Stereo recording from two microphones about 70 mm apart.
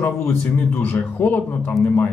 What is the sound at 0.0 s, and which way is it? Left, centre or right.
Speech, left.